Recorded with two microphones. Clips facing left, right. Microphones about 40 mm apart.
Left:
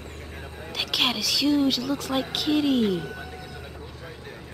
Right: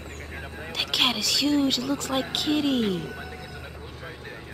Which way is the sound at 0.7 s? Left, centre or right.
Centre.